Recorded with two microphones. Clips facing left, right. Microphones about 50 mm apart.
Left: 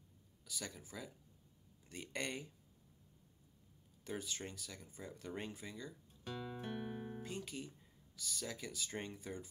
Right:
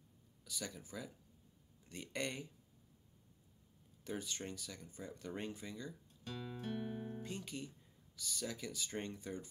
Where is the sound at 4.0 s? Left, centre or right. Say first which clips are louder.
Right 1 dB; centre.